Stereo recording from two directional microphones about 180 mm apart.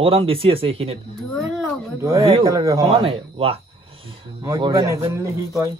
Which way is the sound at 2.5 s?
20° right (ahead or behind).